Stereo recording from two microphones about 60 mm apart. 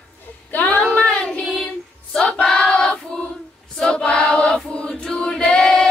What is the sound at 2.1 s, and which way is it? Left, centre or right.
Choir, centre.